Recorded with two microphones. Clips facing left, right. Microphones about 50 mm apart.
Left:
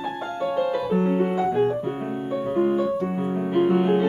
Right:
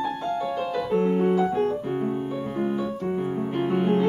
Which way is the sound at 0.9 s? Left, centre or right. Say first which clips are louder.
Right 4 dB; centre.